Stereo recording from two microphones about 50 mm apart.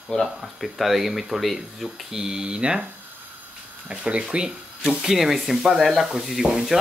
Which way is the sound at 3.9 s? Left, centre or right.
Right.